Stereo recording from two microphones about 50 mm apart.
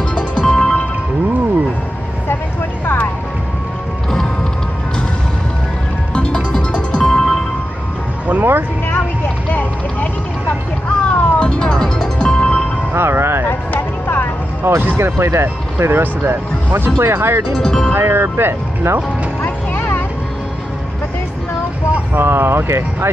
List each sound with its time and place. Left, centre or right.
0.1 s music: centre
6.1 s music: centre
8.3 s music: right
9.5 s a sound: left
11.1 s music: left
11.3 s music: centre
12.9 s music: right
13.5 s vehicle: left
14.6 s music: right
15.0 s speech: right
17.6 s speech: centre
17.9 s speech: right
19.4 s music: left
22.1 s speech: right